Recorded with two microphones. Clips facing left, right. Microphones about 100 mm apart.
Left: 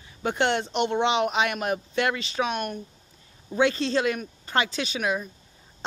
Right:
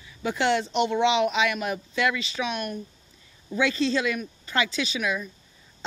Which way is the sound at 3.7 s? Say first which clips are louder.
Even; 40° left (ahead or behind).